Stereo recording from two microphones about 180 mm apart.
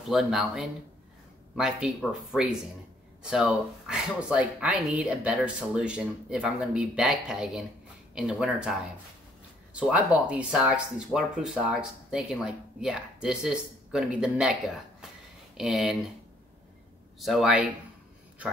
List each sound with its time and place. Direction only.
0.1 s speech: centre (ahead or behind)
9.8 s speech: 5° right (ahead or behind)
17.2 s speech: centre (ahead or behind)